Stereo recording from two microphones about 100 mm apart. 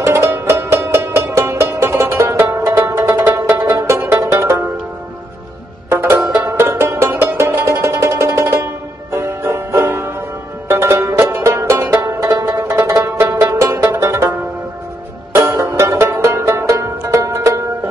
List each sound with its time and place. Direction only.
0.0 s music: 30° right (ahead or behind)
5.9 s music: 20° right (ahead or behind)